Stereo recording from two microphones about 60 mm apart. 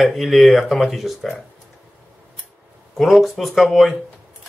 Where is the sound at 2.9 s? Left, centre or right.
Centre.